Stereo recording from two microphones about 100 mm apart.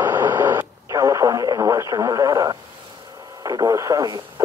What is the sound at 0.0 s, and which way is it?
Radio, 20° right (ahead or behind).